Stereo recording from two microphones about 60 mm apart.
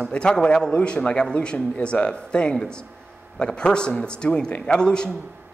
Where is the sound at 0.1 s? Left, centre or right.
Centre.